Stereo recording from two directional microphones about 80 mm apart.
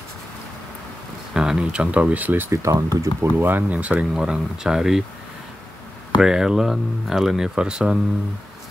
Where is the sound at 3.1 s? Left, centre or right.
Right; by 5.0 s centre.